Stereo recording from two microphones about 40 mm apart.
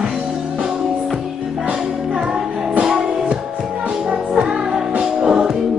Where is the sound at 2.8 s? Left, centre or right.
Centre.